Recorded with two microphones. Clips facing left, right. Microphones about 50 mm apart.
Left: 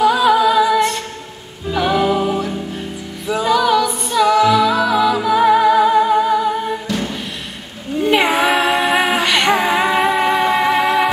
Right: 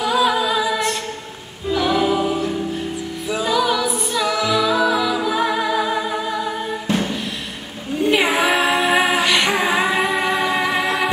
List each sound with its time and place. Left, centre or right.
0.0 s a capella: centre
1.7 s music: centre
6.9 s music: right
8.0 s female singing: centre
10.5 s music: centre